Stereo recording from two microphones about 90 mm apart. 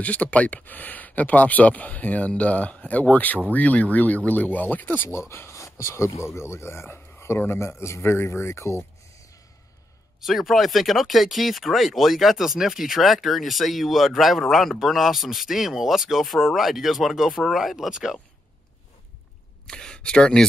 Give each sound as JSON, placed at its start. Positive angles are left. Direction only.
{"t": 0.0, "sound": "speech", "side_deg": 15}
{"t": 10.2, "sound": "speech", "side_deg": 0}
{"t": 19.6, "sound": "speech", "side_deg": 10}